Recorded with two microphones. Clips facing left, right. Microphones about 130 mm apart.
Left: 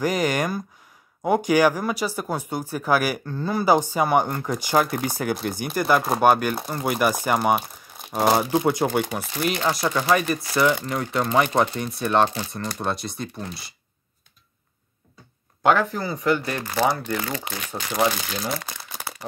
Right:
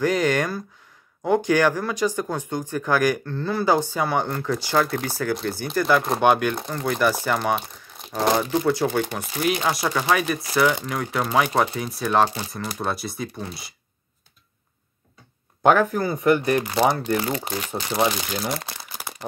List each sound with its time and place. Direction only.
0.0 s speech: 10° left (ahead or behind)
9.2 s speech: centre (ahead or behind)
15.8 s speech: 15° right (ahead or behind)